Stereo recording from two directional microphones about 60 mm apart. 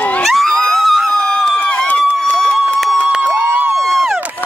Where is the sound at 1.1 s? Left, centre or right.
Centre.